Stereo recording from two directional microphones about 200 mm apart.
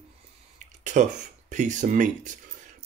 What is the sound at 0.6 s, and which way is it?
Speech, 40° right (ahead or behind).